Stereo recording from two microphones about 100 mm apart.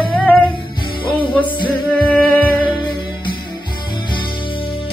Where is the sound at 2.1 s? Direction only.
15° left (ahead or behind).